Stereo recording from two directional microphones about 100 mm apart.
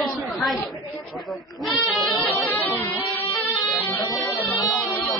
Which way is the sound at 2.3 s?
20° left (ahead or behind).